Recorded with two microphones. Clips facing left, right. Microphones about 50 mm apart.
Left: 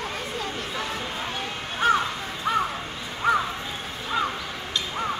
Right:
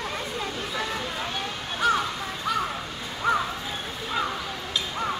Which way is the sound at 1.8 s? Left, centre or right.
Left.